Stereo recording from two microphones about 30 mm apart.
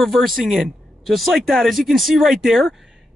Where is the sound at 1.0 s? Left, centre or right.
Centre.